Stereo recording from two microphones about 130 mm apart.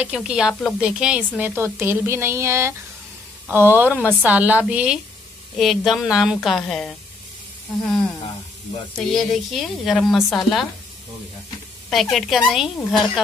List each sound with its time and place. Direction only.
0.0 s a woman's voice: 5° right (ahead or behind)
8.9 s speech: centre (ahead or behind)
11.9 s speech: centre (ahead or behind)